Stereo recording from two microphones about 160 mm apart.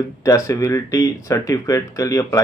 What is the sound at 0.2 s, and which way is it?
Speech, 20° left (ahead or behind).